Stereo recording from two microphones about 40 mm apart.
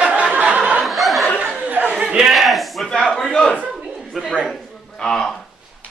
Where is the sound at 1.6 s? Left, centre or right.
Right.